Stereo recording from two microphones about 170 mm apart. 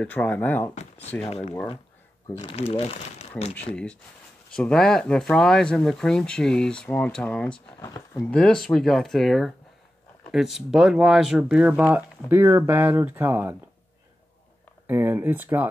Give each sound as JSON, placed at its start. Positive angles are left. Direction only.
{"t": 0.0, "sound": "speech", "side_deg": 10}
{"t": 2.4, "sound": "speech", "side_deg": 40}
{"t": 3.7, "sound": "speech", "side_deg": 5}
{"t": 7.8, "sound": "speech", "side_deg": 20}
{"t": 8.3, "sound": "speech", "side_deg": 5}
{"t": 14.9, "sound": "speech", "side_deg": -15}